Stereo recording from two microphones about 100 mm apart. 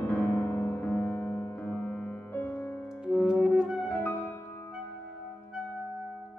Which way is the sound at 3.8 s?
25° left (ahead or behind).